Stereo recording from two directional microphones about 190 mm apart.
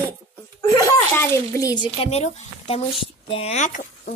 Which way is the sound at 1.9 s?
30° left (ahead or behind).